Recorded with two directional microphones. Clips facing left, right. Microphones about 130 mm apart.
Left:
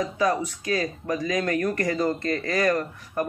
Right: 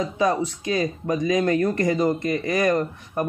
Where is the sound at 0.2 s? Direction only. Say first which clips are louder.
Right 3 dB; 25° right (ahead or behind).